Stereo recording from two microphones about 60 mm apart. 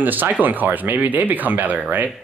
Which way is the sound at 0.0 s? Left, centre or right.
Right.